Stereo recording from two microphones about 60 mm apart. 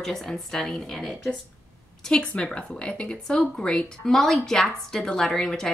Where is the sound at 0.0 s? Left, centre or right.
Centre.